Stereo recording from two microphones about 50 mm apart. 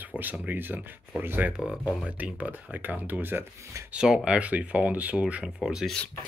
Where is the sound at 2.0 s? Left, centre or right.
Right.